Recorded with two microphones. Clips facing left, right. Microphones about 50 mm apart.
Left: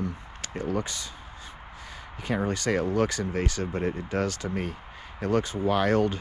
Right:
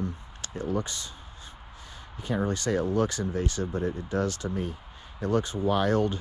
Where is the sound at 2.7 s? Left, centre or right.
Left.